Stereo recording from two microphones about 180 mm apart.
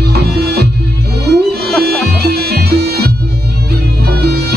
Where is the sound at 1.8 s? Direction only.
60° right (ahead or behind).